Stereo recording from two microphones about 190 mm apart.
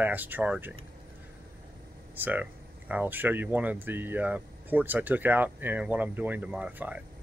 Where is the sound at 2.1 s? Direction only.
10° right (ahead or behind).